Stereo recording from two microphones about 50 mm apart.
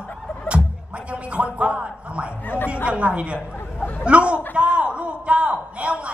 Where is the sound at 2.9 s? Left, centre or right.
Right.